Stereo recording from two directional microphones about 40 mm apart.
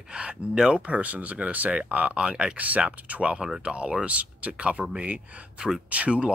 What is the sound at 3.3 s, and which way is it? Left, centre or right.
Speech, centre.